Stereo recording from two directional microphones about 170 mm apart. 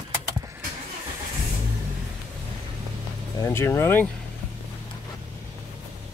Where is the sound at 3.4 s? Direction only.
15° left (ahead or behind).